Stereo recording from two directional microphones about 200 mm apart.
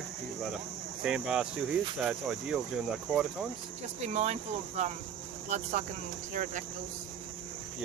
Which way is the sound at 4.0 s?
35° right (ahead or behind).